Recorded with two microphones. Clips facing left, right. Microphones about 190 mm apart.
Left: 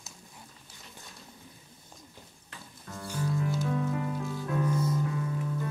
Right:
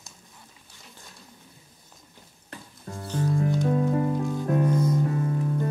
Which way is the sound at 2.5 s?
35° right (ahead or behind).